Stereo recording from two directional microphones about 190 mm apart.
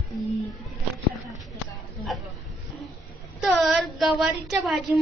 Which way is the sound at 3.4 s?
Centre (ahead or behind).